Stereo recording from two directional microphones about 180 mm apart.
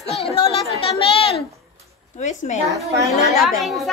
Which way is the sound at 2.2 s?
40° left (ahead or behind).